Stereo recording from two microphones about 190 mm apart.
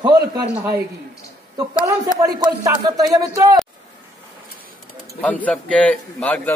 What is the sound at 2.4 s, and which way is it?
Speech, 20° right (ahead or behind).